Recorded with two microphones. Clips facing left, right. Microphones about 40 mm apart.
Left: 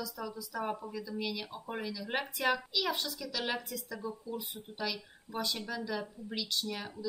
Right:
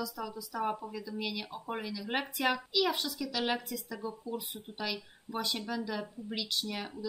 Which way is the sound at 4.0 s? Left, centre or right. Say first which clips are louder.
Right 1 dB; right.